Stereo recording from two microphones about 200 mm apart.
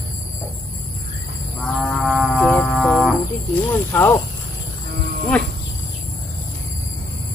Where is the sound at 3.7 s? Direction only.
10° left (ahead or behind).